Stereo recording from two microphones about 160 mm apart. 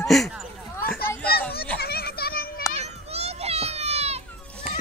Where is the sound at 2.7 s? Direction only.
40° right (ahead or behind).